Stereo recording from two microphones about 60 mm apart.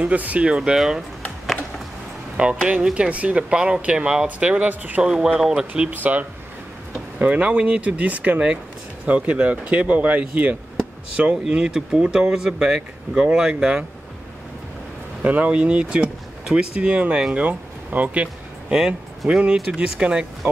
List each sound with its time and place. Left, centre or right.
0.0 s speech: right; by 1.0 s centre
2.3 s speech: centre
5.0 s speech: centre
5.9 s speech: right
11.4 s speech: centre
15.2 s speech: right